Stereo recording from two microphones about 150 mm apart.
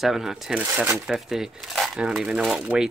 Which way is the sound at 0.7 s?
15° right (ahead or behind).